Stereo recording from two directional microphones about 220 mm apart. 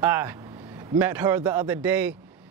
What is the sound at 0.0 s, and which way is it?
A man's voice, 10° right (ahead or behind).